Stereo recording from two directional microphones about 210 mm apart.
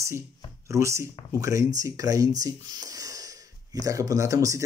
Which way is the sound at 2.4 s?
15° right (ahead or behind).